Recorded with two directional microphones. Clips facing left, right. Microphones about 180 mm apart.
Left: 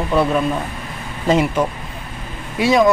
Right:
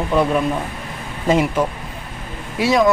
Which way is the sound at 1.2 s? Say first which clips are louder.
Left 1 dB; 5° right (ahead or behind).